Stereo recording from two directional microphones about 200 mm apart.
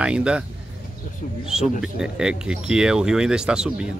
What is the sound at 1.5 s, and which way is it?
Speech, 5° right (ahead or behind).